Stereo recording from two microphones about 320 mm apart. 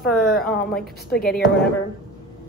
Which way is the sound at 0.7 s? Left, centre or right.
Left.